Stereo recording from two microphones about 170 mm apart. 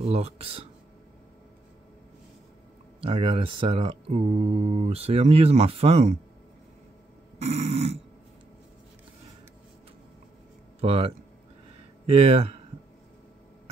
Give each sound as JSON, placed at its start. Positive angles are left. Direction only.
{"t": 0.0, "sound": "speech", "side_deg": -35}
{"t": 3.0, "sound": "speech", "side_deg": -35}
{"t": 7.4, "sound": "speech", "side_deg": -40}
{"t": 10.8, "sound": "speech", "side_deg": -35}